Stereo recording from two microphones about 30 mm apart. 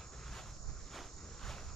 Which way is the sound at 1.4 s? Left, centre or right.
Centre.